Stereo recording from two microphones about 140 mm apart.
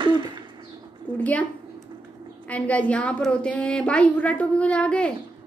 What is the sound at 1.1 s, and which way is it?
Speech, 10° left (ahead or behind).